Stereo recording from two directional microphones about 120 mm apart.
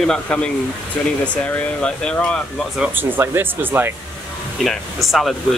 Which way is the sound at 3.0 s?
15° right (ahead or behind).